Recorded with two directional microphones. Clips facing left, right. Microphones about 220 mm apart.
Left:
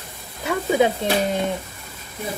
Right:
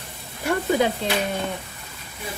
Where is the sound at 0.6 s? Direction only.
15° left (ahead or behind).